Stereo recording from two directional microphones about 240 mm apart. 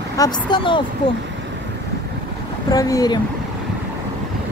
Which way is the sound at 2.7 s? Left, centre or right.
Centre.